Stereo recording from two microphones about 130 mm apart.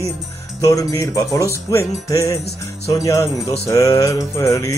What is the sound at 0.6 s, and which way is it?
Jingle bell, 25° left (ahead or behind).